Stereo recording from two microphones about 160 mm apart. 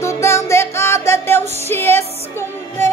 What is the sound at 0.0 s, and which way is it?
Music, 15° left (ahead or behind).